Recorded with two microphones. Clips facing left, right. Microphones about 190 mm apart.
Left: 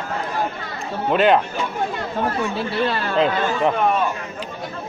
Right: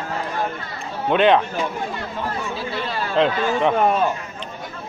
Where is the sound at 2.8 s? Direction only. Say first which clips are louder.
Left 4 dB; 60° left (ahead or behind).